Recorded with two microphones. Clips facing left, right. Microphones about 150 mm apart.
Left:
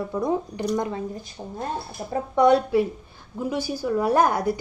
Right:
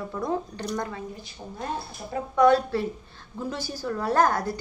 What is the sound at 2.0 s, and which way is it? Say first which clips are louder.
Speech: left 4 dB; 50° left (ahead or behind).